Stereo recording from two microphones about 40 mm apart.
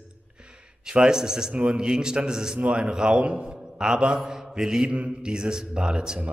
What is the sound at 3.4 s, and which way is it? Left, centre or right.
Mantra, centre.